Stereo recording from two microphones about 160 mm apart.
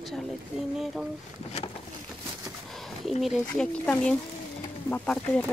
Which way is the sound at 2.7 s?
Centre (ahead or behind).